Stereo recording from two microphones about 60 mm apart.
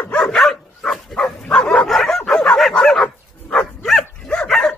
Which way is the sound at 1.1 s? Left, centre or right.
Centre.